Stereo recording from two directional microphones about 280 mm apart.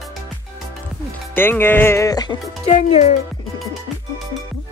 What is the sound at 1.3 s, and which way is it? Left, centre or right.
Speech, centre.